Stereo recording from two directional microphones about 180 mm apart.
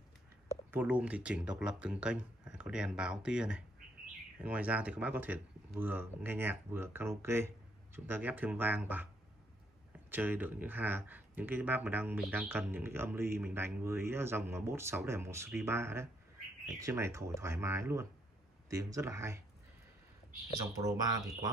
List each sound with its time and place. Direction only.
0.7 s speech: 10° right (ahead or behind)
10.1 s speech: 10° right (ahead or behind)
20.7 s speech: 20° right (ahead or behind)